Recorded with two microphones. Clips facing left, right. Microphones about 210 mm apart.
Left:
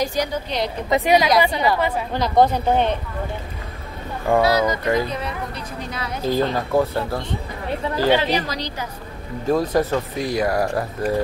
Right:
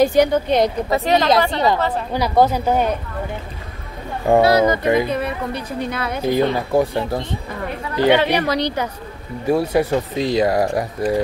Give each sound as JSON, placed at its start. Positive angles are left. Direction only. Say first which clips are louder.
{"t": 0.0, "sound": "a woman's voice", "louder": "right 9 dB", "side_deg": -55}
{"t": 0.8, "sound": "speech", "louder": "right 1 dB", "side_deg": 15}
{"t": 2.1, "sound": "speech", "louder": "right 1 dB", "side_deg": -10}
{"t": 4.5, "sound": "a woman's voice", "louder": "right 4 dB", "side_deg": -55}
{"t": 6.2, "sound": "speech", "louder": "right 2 dB", "side_deg": -15}
{"t": 8.1, "sound": "a woman's voice", "louder": "right 5 dB", "side_deg": -65}
{"t": 9.5, "sound": "speech", "louder": "right 2 dB", "side_deg": -10}